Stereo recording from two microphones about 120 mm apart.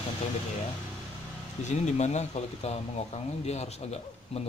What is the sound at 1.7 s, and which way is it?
Speech, 75° left (ahead or behind).